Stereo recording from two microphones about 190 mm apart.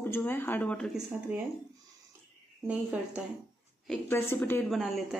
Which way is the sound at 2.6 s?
10° right (ahead or behind).